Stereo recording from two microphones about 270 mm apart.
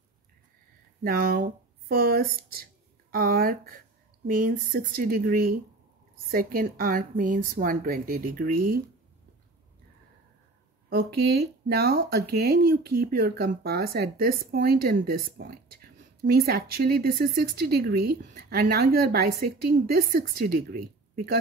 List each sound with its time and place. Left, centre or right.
1.0 s speech: right
10.9 s speech: right